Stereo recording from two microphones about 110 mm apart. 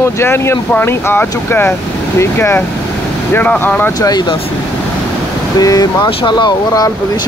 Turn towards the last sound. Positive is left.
turn(degrees=40)  # may be behind; listen again after turning